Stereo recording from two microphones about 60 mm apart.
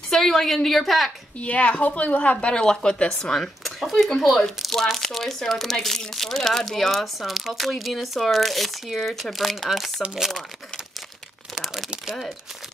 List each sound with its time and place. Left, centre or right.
0.1 s speech: centre
1.4 s a woman's voice: left
2.4 s speech: centre
3.3 s speech: centre
11.5 s crumpling: centre